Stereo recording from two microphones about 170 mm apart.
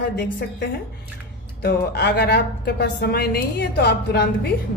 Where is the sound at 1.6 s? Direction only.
65° left (ahead or behind).